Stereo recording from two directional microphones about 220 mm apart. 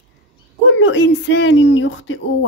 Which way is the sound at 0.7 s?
60° left (ahead or behind).